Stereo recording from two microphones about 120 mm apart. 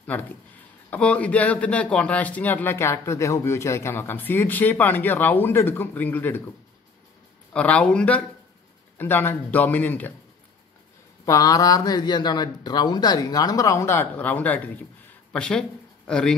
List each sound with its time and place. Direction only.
0.0 s a man's voice: 10° left (ahead or behind)
7.5 s a man's voice: 10° left (ahead or behind)
11.2 s a man's voice: 30° left (ahead or behind); by 16.3 s 5° left (ahead or behind)